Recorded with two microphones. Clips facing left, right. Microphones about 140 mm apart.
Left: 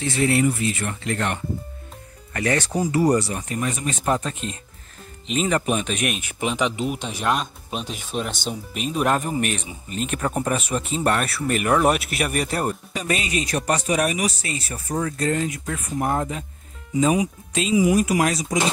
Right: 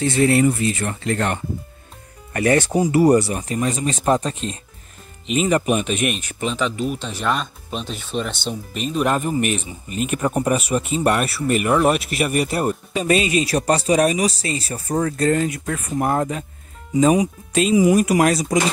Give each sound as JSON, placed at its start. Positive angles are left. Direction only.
{"t": 0.0, "sound": "speech", "side_deg": -35}
{"t": 5.2, "sound": "speech", "side_deg": -5}
{"t": 12.9, "sound": "speech", "side_deg": -25}
{"t": 15.5, "sound": "speech", "side_deg": -60}
{"t": 16.9, "sound": "speech", "side_deg": -40}
{"t": 17.5, "sound": "speech", "side_deg": -55}